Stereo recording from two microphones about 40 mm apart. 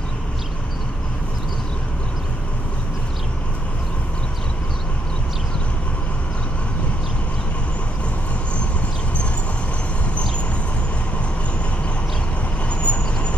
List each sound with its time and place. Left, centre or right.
12.8 s vehicle: left